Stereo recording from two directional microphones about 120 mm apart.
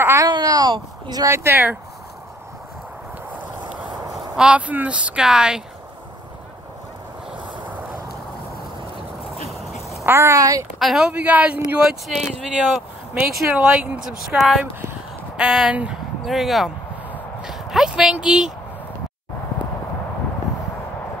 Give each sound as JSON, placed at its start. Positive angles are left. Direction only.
{"t": 0.0, "sound": "a sound", "side_deg": -25}
{"t": 0.3, "sound": "a sound", "side_deg": -35}
{"t": 1.2, "sound": "speech", "side_deg": -20}
{"t": 3.9, "sound": "speech", "side_deg": -5}
{"t": 9.5, "sound": "quack", "side_deg": 0}
{"t": 10.0, "sound": "speech", "side_deg": -25}
{"t": 10.8, "sound": "speech", "side_deg": -5}
{"t": 13.1, "sound": "speech", "side_deg": -10}
{"t": 17.1, "sound": "a sound", "side_deg": -5}